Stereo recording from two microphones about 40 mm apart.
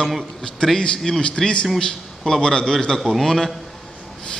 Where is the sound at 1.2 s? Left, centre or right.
Left.